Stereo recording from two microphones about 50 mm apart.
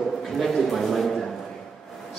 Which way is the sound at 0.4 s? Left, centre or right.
Centre.